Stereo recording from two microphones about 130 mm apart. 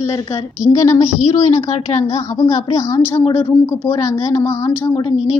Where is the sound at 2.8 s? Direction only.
25° left (ahead or behind).